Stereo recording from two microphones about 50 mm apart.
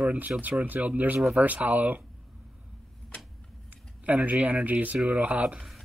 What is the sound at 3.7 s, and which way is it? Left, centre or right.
Speech, right.